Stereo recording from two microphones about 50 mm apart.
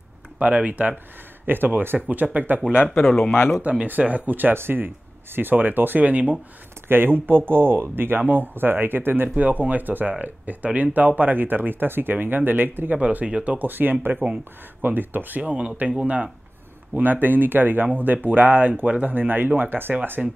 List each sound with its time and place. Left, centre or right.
0.4 s speech: right
1.4 s speech: right
2.0 s speech: right
3.1 s speech: centre
3.7 s speech: right
6.9 s speech: right
9.3 s speech: right
13.0 s speech: right
15.5 s speech: right
16.9 s speech: right
19.1 s speech: right